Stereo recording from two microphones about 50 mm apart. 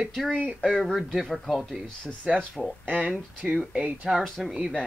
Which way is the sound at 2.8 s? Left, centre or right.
Right.